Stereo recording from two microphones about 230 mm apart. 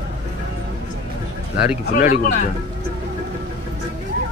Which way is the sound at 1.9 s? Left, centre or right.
Left.